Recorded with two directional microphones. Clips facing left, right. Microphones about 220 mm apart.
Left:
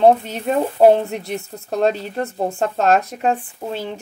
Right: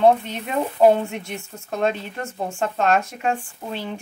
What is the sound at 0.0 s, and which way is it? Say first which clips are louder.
Speech: left 3 dB; 35° left (ahead or behind).